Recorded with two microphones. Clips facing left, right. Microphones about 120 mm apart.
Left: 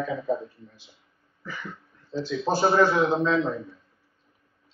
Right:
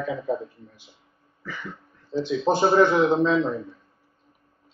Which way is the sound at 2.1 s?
20° right (ahead or behind).